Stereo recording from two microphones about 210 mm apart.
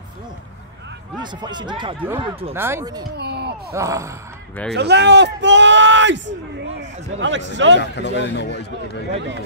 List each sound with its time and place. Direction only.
1.2 s speech: 20° right (ahead or behind)
2.5 s speech: 10° right (ahead or behind)
3.2 s a sound: 50° right (ahead or behind)
3.7 s speech: 15° right (ahead or behind)
4.7 s a man's voice: 55° right (ahead or behind)
7.8 s speech: 55° left (ahead or behind)